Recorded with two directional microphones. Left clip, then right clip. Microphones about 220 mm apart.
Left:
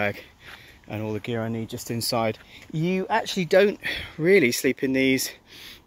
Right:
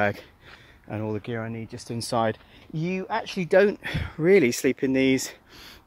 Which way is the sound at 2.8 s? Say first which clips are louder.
Left 4 dB; 20° left (ahead or behind).